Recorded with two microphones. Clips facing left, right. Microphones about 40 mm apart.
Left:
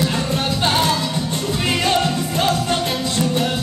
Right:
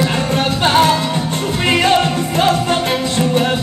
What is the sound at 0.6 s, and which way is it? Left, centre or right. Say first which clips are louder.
Music: right 7 dB; right.